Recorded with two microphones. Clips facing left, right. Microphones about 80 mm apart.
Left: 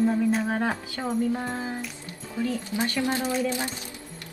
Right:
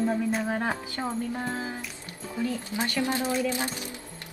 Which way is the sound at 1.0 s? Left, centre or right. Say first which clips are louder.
Left 5 dB; centre.